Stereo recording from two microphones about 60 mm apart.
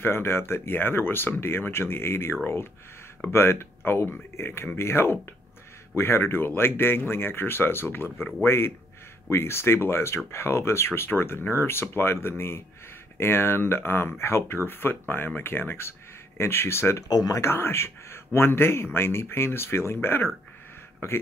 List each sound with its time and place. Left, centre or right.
0.0 s speech: left
17.1 s speech: left
17.4 s speech: left